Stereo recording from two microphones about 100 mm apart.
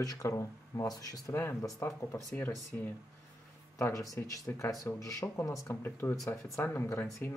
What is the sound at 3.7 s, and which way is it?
Speech, 35° left (ahead or behind).